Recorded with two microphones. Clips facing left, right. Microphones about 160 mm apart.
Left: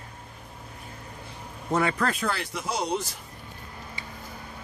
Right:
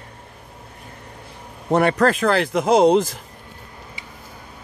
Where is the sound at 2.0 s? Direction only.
85° right.